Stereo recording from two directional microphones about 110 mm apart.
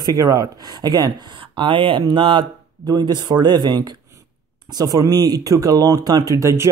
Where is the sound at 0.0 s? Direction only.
35° right (ahead or behind).